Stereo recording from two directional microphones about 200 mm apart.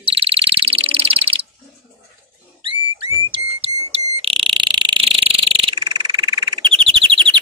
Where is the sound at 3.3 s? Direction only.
30° right (ahead or behind).